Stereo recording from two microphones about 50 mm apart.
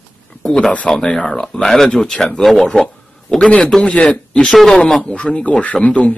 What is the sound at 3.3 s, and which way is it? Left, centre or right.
A man's voice, centre.